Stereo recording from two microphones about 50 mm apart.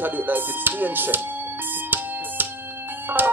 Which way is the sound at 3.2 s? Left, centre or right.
Right.